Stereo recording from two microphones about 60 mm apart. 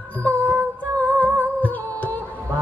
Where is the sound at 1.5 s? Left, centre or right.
Left.